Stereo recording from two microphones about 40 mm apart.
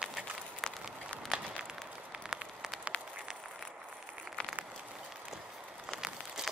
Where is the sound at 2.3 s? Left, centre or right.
Centre.